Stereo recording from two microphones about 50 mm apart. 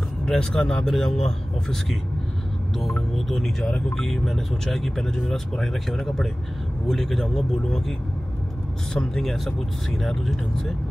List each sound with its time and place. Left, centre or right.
0.2 s speech: centre
0.8 s speech: centre
3.3 s speech: centre
8.9 s speech: centre
9.2 s speech: centre